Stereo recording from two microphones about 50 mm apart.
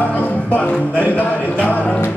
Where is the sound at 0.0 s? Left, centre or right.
Left.